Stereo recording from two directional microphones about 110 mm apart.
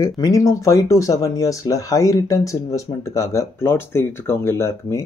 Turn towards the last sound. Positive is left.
turn(degrees=25)  # may be behind; listen again after turning